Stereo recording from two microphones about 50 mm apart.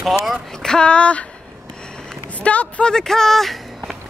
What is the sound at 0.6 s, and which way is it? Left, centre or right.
Speech, centre.